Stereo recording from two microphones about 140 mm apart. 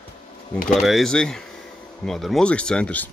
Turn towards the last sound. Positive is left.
turn(degrees=10)  # may be behind; listen again after turning